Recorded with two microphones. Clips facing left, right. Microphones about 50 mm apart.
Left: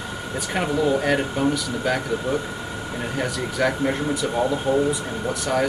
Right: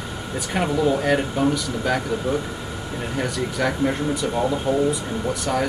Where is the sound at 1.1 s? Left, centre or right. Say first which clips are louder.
Right 1 dB; centre.